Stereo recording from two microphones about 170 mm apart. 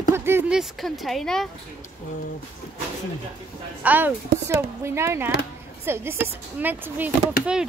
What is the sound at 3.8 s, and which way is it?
Speech, 10° right (ahead or behind).